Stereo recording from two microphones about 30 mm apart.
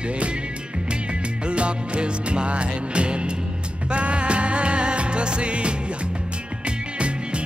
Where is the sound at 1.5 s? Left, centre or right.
Right.